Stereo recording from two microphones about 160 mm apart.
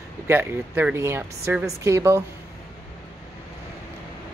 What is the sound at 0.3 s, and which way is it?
A woman's voice, 10° right (ahead or behind).